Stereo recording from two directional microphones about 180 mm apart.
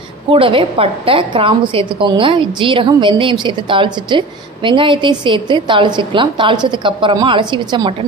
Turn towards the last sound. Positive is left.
turn(degrees=-25)  # may be behind; listen again after turning